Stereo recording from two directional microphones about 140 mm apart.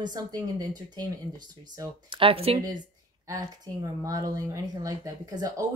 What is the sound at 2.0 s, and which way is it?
Speech, 40° right (ahead or behind).